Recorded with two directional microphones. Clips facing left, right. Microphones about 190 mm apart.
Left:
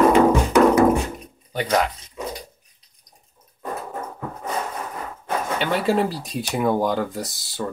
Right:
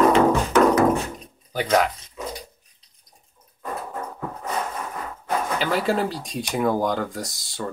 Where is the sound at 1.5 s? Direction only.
Centre (ahead or behind).